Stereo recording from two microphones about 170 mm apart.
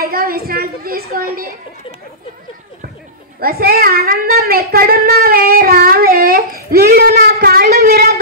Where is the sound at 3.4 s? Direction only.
60° right (ahead or behind).